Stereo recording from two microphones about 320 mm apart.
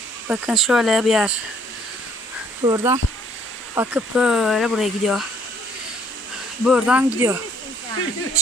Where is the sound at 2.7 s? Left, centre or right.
Centre.